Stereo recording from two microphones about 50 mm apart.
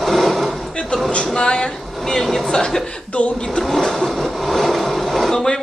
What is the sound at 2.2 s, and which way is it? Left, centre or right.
Speech, centre.